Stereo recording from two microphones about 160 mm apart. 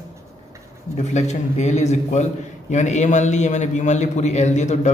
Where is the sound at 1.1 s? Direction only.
45° left (ahead or behind).